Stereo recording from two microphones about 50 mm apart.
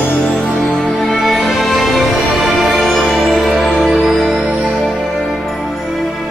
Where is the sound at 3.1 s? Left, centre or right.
Centre.